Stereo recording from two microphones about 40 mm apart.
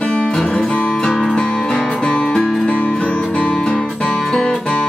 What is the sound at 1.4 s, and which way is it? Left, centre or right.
Music, left.